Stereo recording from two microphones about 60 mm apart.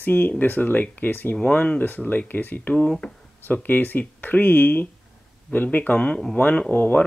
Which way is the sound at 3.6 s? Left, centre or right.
Left.